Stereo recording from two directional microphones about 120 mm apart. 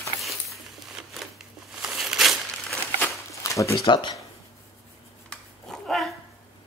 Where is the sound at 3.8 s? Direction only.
40° left (ahead or behind).